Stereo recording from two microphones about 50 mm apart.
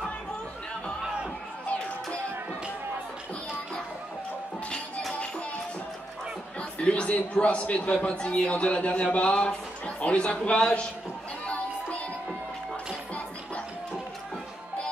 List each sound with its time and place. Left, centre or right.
1.0 s music: centre
6.8 s a man's voice: left
11.4 s music: left